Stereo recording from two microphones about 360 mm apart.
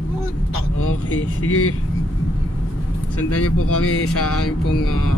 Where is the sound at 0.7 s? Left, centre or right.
Left.